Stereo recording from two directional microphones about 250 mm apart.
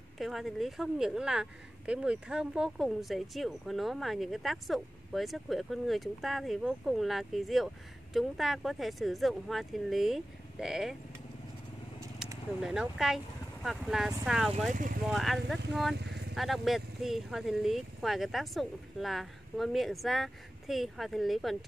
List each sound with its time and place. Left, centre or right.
0.2 s a woman's voice: centre
12.6 s a woman's voice: centre
14.7 s speech: right
15.0 s a woman's voice: centre
16.0 s vehicle: right
16.3 s a woman's voice: centre